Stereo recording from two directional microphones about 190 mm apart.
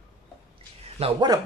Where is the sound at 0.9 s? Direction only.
30° right (ahead or behind).